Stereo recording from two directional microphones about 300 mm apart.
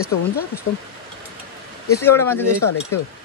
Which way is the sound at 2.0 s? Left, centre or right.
Centre.